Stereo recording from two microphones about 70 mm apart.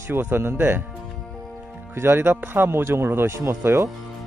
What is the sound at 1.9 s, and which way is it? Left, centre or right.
Speech, right.